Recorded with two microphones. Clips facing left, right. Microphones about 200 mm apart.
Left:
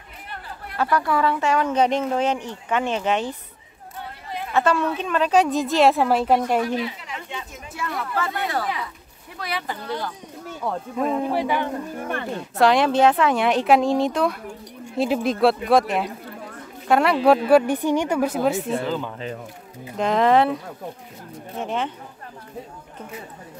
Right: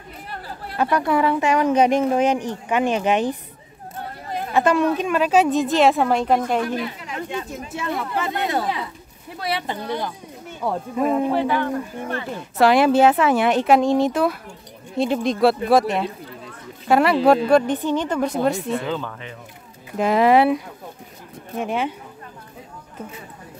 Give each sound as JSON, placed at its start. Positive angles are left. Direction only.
{"t": 0.7, "sound": "speech", "side_deg": -20}
{"t": 4.0, "sound": "chatter", "side_deg": -45}
{"t": 4.6, "sound": "a woman's voice", "side_deg": -15}
{"t": 6.6, "sound": "speech", "side_deg": -50}
{"t": 7.5, "sound": "speech", "side_deg": -25}
{"t": 9.8, "sound": "a woman's voice", "side_deg": -15}
{"t": 11.2, "sound": "speech", "side_deg": 10}
{"t": 12.4, "sound": "a woman's voice", "side_deg": -5}
{"t": 20.0, "sound": "speech", "side_deg": -5}